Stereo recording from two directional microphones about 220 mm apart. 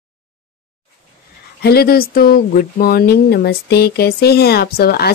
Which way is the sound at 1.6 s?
45° left (ahead or behind).